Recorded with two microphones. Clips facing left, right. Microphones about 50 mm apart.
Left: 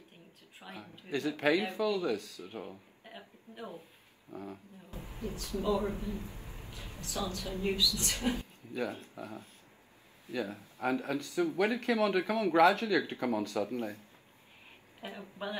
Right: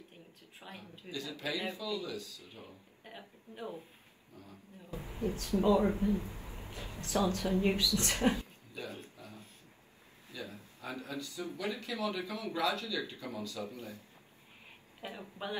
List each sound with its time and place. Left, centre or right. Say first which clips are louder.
0.6 s speech: left 2 dB; left
3.1 s speech: even; left
4.3 s speech: left 11 dB; left
4.9 s speech: right 4 dB; right
6.4 s a sound: right 2 dB; right
7.0 s speech: right 6 dB; right
8.7 s speech: left 7 dB; left